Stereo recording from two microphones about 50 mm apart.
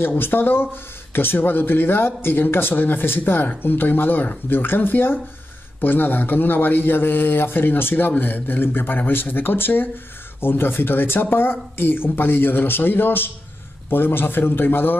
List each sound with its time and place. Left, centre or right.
0.2 s speech: left